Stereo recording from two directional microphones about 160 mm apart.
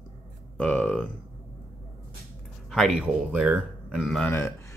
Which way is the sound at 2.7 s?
Centre (ahead or behind).